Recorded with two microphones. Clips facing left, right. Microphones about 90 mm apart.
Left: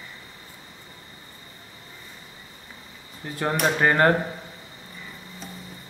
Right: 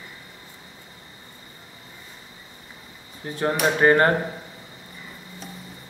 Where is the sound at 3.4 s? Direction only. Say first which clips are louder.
Right 3 dB; centre (ahead or behind).